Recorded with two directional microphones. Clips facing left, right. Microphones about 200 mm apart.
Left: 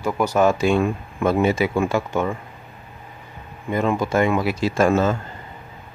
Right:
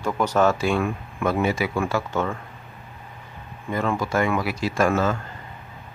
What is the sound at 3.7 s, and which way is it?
Speech, 20° left (ahead or behind).